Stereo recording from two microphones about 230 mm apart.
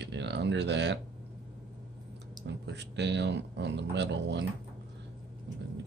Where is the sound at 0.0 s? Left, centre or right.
Right.